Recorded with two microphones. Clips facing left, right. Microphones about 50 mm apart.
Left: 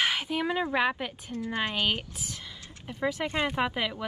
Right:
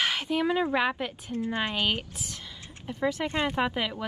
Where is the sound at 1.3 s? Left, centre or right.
Right.